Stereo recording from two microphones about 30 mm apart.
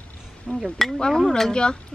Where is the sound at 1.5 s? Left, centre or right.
Left.